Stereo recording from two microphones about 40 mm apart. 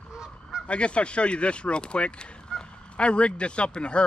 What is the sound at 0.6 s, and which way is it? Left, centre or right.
Speech, left.